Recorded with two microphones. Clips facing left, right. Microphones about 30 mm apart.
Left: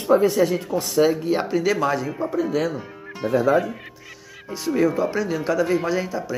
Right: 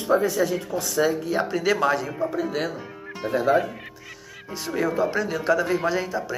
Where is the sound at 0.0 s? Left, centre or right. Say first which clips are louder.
Left 4 dB; left.